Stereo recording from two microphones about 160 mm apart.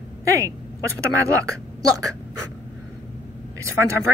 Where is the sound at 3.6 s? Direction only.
20° right (ahead or behind).